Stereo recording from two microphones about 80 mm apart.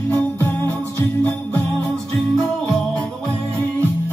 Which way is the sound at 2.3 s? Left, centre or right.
Centre.